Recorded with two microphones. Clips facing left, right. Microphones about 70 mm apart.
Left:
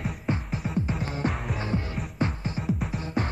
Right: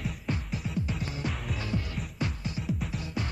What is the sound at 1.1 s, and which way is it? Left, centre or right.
Music, left.